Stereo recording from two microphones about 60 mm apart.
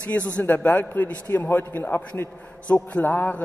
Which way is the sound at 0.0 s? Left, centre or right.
Left.